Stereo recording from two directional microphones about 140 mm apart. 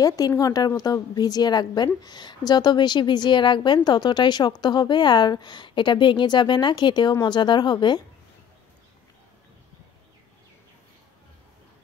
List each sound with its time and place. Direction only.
0.0 s a woman's voice: 25° left (ahead or behind)